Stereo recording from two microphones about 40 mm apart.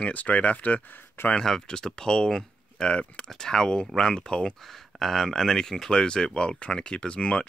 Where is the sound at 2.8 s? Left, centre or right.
Left.